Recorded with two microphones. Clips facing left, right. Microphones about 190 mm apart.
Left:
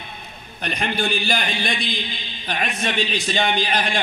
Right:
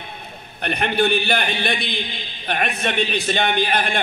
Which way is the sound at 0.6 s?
60° right (ahead or behind).